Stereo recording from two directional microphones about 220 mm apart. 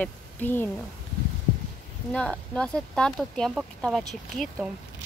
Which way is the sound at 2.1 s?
5° left (ahead or behind).